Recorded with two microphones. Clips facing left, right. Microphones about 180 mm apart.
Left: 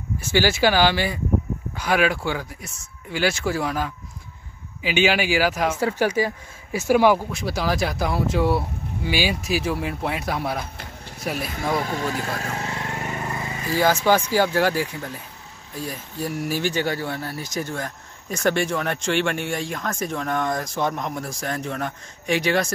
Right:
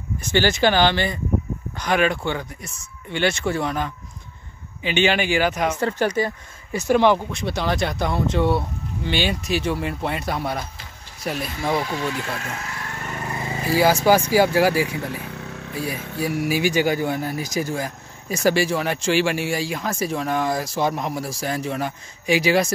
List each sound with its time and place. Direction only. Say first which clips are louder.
0.2 s speech: right 1 dB; 5° left (ahead or behind)
11.8 s speech: even; 45° left (ahead or behind); by 13.0 s 25° left (ahead or behind)
13.7 s speech: right 2 dB; 10° right (ahead or behind)
15.0 s vehicle: right 6 dB; 70° right (ahead or behind)
16.2 s speech: right 3 dB; 10° right (ahead or behind)